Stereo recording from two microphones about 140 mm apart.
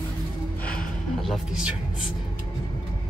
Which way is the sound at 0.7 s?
Centre (ahead or behind).